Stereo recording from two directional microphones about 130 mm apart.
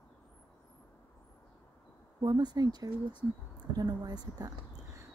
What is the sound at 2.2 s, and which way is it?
Speech, 35° right (ahead or behind).